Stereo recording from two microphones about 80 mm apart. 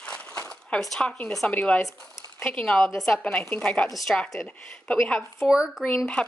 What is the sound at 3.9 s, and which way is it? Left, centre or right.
A woman's voice, centre.